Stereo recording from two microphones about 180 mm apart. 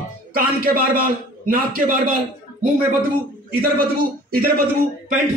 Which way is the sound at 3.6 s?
55° right (ahead or behind).